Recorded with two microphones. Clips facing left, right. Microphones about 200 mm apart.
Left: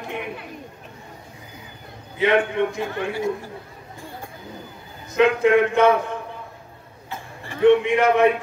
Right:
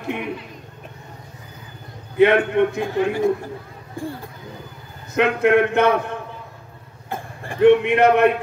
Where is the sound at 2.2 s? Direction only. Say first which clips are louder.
Right 4 dB; 60° right (ahead or behind).